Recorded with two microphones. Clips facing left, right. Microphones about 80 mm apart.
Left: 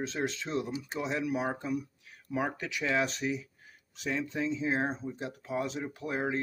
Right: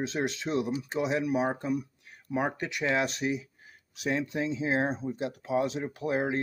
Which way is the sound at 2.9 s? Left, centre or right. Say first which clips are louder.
Even; centre.